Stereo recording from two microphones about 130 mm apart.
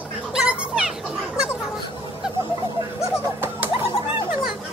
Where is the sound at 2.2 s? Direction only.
5° right (ahead or behind).